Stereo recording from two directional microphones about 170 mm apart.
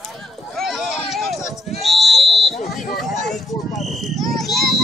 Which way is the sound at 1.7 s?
Centre (ahead or behind).